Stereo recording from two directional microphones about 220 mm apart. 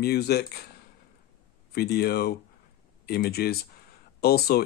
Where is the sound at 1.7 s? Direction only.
45° left (ahead or behind).